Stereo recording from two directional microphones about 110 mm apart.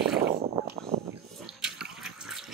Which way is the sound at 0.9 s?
90° right.